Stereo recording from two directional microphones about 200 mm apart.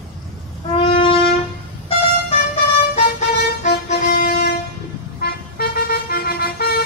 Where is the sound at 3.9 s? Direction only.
40° left (ahead or behind).